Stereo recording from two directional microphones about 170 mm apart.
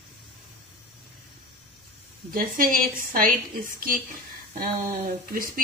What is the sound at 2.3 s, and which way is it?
Speech, 55° right (ahead or behind).